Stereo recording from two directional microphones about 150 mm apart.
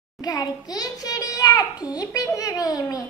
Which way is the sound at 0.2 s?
25° left (ahead or behind).